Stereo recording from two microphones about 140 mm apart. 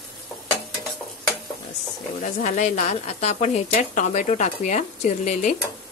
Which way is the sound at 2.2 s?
65° left (ahead or behind).